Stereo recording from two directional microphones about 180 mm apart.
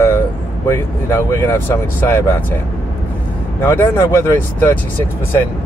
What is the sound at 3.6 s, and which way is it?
Speech, 15° left (ahead or behind).